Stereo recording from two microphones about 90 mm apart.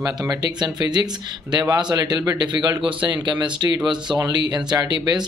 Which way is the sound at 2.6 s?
65° right (ahead or behind).